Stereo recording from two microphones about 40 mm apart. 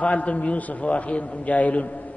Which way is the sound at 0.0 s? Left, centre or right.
Left.